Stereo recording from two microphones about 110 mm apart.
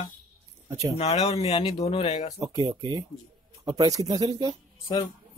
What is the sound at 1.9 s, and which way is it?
Speech, 55° left (ahead or behind).